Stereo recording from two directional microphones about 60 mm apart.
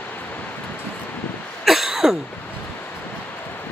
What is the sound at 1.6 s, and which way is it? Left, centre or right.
Cough, centre.